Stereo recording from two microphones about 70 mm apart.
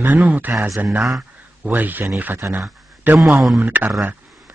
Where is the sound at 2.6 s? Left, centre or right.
Right.